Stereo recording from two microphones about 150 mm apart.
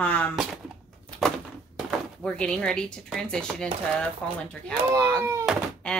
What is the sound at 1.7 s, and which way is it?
Speech, 5° left (ahead or behind).